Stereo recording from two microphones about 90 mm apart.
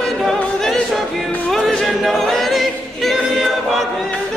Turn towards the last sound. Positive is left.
turn(degrees=0)  # may be behind; listen again after turning